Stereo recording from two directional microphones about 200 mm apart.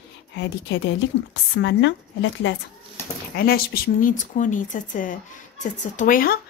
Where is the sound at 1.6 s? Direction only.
65° left (ahead or behind).